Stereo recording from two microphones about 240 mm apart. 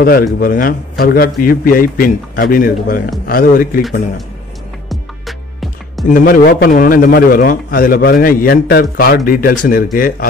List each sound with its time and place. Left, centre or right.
0.0 s a man's voice: left
4.8 s music: centre
6.0 s a man's voice: left